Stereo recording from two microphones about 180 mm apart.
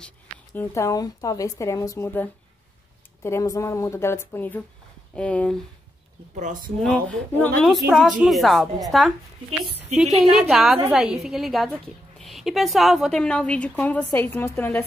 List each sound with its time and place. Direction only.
0.6 s a woman's voice: 15° left (ahead or behind)
6.3 s speech: 45° right (ahead or behind)
6.8 s a woman's voice: 5° left (ahead or behind)
10.5 s a woman's voice: 5° right (ahead or behind)